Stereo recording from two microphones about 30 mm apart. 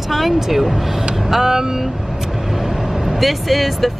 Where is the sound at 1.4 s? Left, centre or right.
Centre.